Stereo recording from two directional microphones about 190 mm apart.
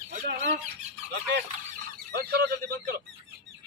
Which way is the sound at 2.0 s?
55° right (ahead or behind).